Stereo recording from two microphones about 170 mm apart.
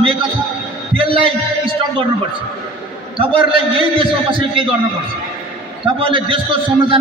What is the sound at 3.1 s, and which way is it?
A man's voice, 30° right (ahead or behind).